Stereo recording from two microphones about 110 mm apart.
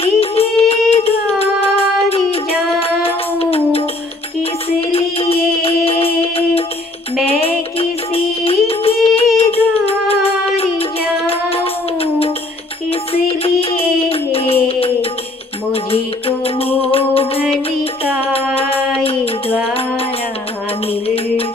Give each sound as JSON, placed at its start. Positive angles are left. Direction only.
{"t": 0.0, "sound": "music", "side_deg": 65}
{"t": 9.4, "sound": "child singing", "side_deg": 60}
{"t": 12.9, "sound": "music", "side_deg": 60}